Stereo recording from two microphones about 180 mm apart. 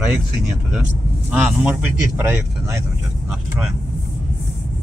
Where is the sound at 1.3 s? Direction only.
5° right (ahead or behind).